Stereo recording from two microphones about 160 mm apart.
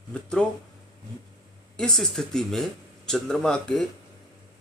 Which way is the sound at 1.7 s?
5° left (ahead or behind).